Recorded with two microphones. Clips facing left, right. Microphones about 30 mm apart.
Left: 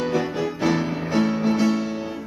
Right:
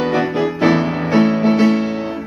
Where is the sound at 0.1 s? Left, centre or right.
Right.